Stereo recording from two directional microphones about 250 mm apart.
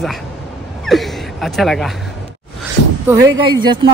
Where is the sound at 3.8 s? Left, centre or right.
Centre.